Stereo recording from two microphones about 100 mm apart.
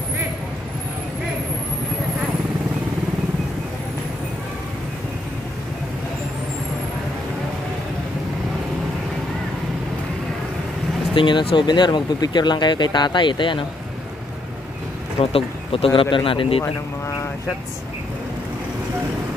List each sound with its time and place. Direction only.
11.1 s speech: 55° left (ahead or behind)
15.1 s speech: 70° left (ahead or behind)
15.9 s speech: 55° left (ahead or behind)